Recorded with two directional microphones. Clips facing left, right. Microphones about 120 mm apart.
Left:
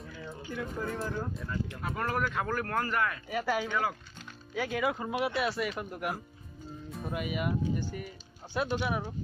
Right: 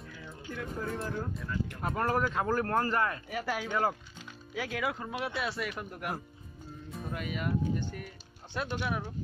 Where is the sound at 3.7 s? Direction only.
40° right (ahead or behind).